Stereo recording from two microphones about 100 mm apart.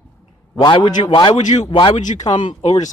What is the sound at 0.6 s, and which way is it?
A man's voice, 55° left (ahead or behind).